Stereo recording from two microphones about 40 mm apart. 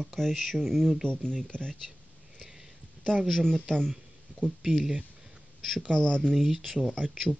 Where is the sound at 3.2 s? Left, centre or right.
Centre.